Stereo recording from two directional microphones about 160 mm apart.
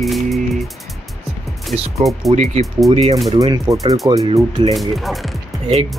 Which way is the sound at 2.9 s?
40° right (ahead or behind).